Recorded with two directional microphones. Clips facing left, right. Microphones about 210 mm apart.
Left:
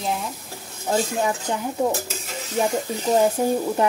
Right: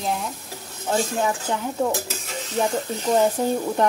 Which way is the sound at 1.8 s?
15° left (ahead or behind).